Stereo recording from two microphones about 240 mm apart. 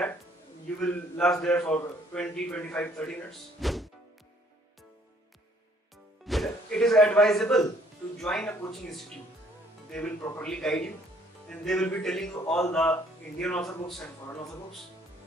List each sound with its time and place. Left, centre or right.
0.7 s a man's voice: centre
6.2 s music: centre
8.2 s a man's voice: centre